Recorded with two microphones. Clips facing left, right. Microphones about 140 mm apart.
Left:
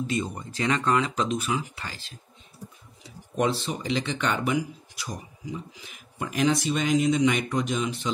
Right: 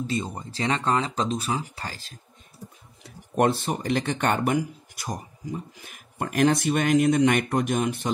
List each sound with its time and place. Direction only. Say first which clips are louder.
0.0 s speech: even; 30° right (ahead or behind)
3.0 s speech: right 4 dB; 55° right (ahead or behind)